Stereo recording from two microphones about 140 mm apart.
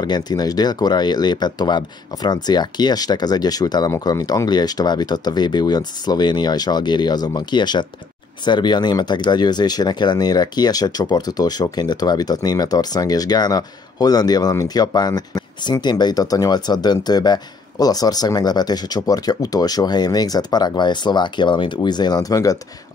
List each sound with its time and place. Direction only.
0.0 s speech: 30° left (ahead or behind)